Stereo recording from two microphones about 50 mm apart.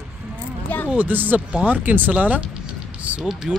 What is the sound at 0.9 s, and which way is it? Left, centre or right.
Speech, right.